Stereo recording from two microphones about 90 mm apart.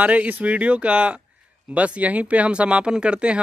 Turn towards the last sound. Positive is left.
turn(degrees=-10)  # may be behind; listen again after turning